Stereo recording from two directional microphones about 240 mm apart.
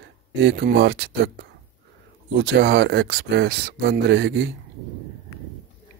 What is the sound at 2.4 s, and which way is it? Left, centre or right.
Speech, right.